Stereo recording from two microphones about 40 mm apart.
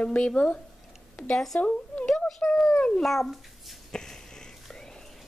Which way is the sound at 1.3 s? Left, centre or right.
Centre.